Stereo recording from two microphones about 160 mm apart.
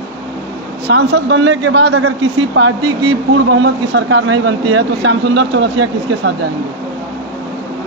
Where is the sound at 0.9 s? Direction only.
90° right.